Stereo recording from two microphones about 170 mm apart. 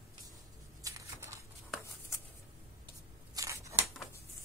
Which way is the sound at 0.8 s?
15° right (ahead or behind).